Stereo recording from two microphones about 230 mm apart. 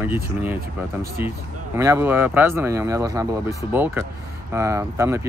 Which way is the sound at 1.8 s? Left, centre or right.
Centre.